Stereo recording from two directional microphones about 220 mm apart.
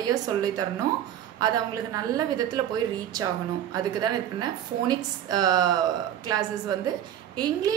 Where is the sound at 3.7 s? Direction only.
20° right (ahead or behind).